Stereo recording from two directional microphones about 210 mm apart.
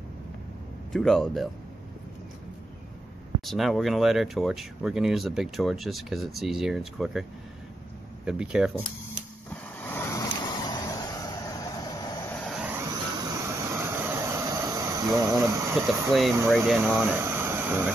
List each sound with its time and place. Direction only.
0.9 s speech: 5° left (ahead or behind)
3.3 s speech: centre (ahead or behind)
8.3 s speech: 5° right (ahead or behind)
9.5 s vehicle: 10° left (ahead or behind)
12.4 s vehicle: 5° right (ahead or behind)
16.1 s speech: centre (ahead or behind)